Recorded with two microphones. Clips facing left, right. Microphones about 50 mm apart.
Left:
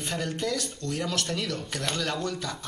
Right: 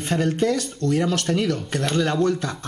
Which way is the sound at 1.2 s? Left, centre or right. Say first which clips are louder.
Right 8 dB; right.